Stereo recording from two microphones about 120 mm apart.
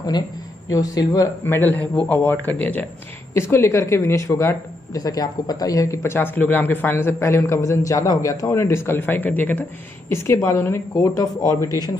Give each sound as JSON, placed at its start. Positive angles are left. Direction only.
{"t": 0.7, "sound": "a man's voice", "side_deg": 30}